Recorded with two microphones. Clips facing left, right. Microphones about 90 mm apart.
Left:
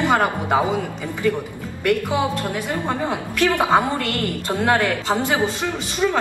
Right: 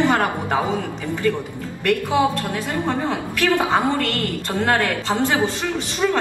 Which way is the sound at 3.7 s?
15° left (ahead or behind).